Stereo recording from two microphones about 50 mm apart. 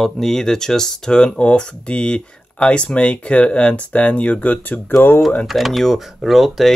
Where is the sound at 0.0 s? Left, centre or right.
Centre; by 4.7 s left.